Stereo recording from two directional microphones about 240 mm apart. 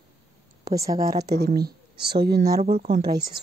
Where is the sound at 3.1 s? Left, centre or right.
Centre.